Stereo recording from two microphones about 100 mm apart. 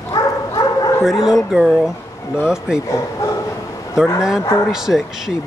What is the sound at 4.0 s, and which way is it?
Speech, 5° right (ahead or behind).